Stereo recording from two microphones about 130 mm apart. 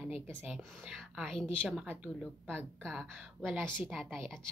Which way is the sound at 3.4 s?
5° right (ahead or behind).